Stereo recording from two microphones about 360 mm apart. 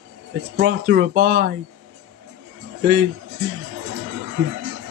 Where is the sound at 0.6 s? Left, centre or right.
Right.